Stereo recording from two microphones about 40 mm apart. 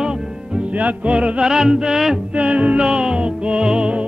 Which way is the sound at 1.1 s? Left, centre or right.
Right.